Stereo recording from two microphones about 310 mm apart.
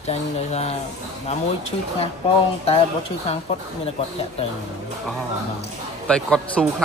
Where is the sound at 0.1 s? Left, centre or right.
Left.